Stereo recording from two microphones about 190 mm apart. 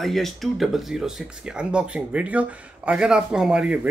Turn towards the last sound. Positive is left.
turn(degrees=-5)  # may be behind; listen again after turning